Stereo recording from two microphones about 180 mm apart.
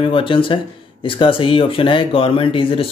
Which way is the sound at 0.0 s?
30° left (ahead or behind).